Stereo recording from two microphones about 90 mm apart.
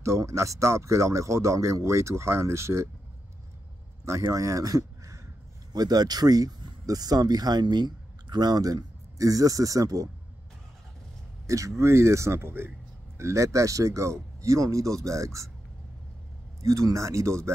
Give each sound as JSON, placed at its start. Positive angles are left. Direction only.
{"t": 0.0, "sound": "speech", "side_deg": -35}
{"t": 4.0, "sound": "speech", "side_deg": -35}
{"t": 11.4, "sound": "speech", "side_deg": -35}
{"t": 16.6, "sound": "speech", "side_deg": -35}